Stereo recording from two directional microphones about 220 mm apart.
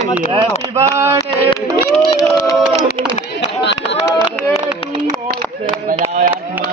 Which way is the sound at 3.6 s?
50° left (ahead or behind).